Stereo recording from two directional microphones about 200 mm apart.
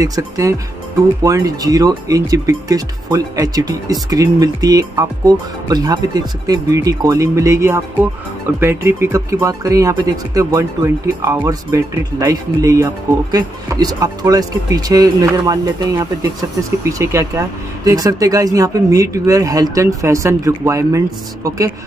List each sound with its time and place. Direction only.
0.0 s speech: 15° right (ahead or behind)